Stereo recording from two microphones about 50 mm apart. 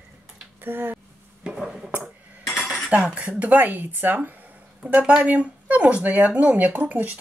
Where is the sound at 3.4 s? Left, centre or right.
Right.